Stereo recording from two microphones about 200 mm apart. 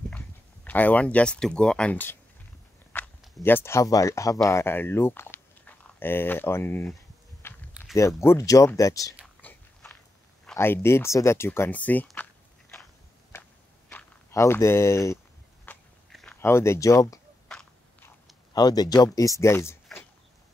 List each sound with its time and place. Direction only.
0.7 s speech: 10° left (ahead or behind)
7.4 s biting: 10° left (ahead or behind)
8.2 s speech: 15° left (ahead or behind)
9.2 s whispering: 5° left (ahead or behind)
10.4 s speech: 5° left (ahead or behind)
13.3 s a sound: 10° left (ahead or behind)
17.5 s a sound: 5° left (ahead or behind)
18.5 s speech: 20° left (ahead or behind)